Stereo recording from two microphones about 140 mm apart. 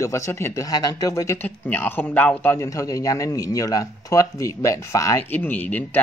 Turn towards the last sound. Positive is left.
turn(degrees=15)  # may be behind; listen again after turning